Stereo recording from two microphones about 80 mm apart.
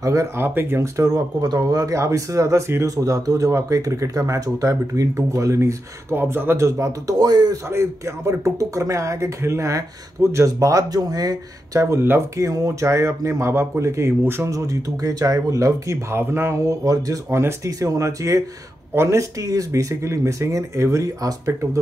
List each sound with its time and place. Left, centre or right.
0.0 s speech: right
1.0 s speech: right
7.7 s speech: right